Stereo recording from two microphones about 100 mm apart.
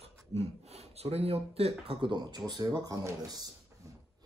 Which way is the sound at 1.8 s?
65° right (ahead or behind).